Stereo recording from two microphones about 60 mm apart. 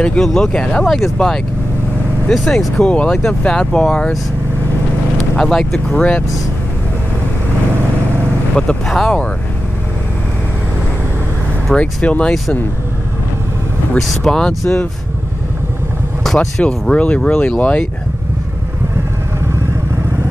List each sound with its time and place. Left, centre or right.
0.0 s speech: centre
0.8 s speech: centre
2.9 s speech: centre
5.4 s speech: centre
5.9 s speech: centre
8.8 s speech: centre
11.7 s speech: centre
14.0 s speech: centre
16.3 s speech: centre